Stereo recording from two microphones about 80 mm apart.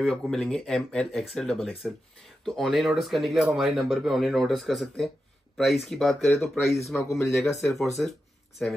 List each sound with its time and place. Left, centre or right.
0.0 s speech: centre
7.0 s speech: left